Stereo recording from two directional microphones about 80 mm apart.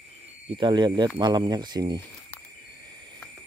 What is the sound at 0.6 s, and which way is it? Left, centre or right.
Speech, right.